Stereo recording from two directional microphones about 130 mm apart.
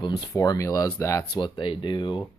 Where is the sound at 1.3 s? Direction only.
35° left (ahead or behind).